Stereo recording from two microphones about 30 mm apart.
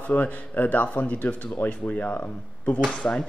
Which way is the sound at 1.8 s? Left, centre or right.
Left.